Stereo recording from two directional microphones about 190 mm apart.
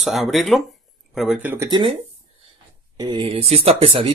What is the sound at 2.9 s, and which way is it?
Speech, 25° right (ahead or behind).